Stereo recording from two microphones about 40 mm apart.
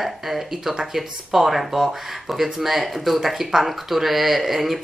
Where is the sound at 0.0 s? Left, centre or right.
Centre.